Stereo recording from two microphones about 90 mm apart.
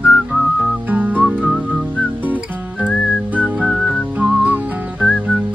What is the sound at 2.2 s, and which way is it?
Music, 20° right (ahead or behind).